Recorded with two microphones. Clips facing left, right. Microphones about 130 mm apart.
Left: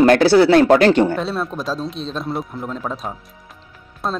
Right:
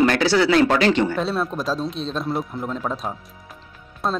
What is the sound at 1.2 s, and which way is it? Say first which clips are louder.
Speech: even; centre (ahead or behind).